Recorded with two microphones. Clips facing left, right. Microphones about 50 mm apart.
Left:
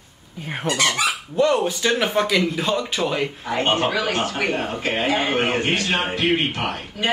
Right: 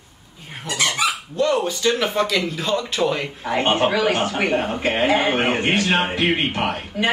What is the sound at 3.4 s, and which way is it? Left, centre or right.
Speech, right.